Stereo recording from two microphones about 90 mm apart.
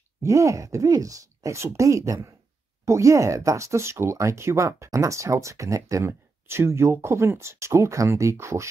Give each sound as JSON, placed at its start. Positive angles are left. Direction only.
{"t": 0.2, "sound": "speech", "side_deg": -35}